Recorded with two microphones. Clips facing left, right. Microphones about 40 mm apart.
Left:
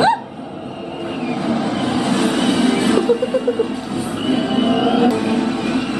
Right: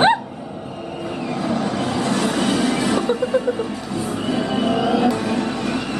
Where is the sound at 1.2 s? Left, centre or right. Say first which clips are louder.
Left 3 dB; centre.